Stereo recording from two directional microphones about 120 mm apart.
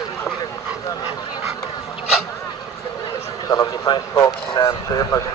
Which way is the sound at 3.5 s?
30° left (ahead or behind).